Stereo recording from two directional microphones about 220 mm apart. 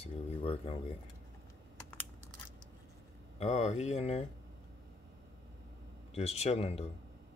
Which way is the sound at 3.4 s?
30° left (ahead or behind).